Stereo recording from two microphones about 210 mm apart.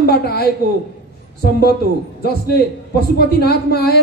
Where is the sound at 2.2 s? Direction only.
50° left (ahead or behind).